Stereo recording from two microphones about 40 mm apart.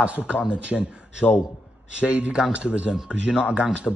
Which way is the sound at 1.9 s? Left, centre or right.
Right.